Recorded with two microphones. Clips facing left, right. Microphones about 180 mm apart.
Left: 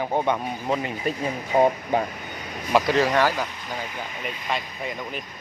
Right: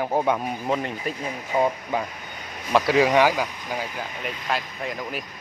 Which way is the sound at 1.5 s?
25° left (ahead or behind).